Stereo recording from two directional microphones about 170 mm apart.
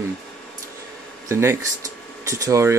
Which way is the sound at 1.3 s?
15° right (ahead or behind).